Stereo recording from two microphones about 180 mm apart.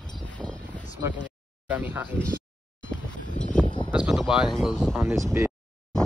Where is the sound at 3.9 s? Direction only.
5° right (ahead or behind).